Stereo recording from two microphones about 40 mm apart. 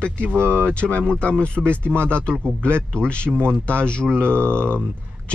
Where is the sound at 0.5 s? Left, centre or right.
Left.